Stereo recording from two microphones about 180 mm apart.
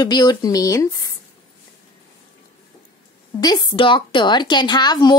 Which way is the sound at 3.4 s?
20° left (ahead or behind).